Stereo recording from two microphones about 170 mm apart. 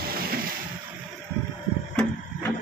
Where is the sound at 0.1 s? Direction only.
60° right (ahead or behind).